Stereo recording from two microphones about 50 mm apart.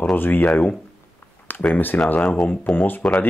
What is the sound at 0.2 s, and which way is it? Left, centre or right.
Speech, left.